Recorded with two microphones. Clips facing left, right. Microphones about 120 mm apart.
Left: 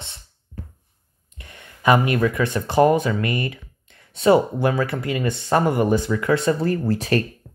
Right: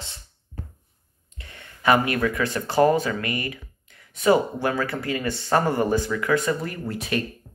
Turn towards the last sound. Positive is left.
turn(degrees=35)  # may be behind; listen again after turning